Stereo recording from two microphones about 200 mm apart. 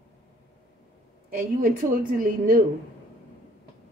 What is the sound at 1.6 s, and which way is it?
Speech, 45° right (ahead or behind).